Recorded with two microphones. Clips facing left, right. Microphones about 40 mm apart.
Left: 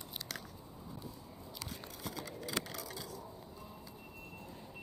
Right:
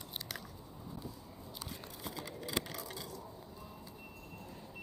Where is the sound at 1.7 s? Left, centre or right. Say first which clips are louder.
Left 1 dB; centre.